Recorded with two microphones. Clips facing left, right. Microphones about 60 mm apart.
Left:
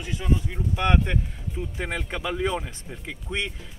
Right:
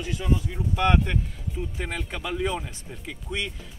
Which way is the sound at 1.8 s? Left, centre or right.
Left.